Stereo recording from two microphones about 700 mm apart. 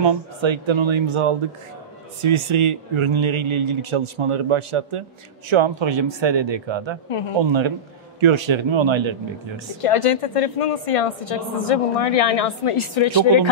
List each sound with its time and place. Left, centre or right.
0.0 s a man's voice: right
7.1 s speech: left
7.4 s a man's voice: right
9.8 s speech: left